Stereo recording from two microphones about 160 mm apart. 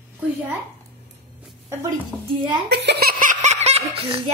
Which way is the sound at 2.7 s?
90° right.